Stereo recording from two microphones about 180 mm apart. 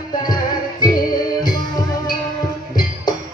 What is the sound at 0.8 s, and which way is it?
Music, 20° left (ahead or behind).